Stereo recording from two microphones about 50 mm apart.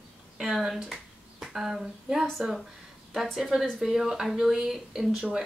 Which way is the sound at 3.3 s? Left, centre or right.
Centre.